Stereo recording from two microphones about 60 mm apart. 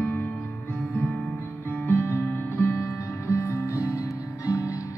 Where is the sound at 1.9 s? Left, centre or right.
Left.